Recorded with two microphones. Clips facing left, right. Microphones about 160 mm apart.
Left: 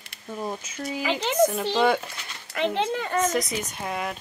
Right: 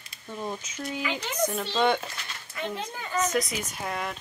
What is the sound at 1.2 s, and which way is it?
Speech, 90° left.